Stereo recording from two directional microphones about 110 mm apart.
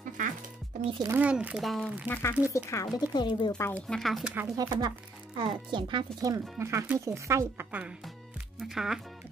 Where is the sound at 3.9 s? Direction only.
Centre (ahead or behind).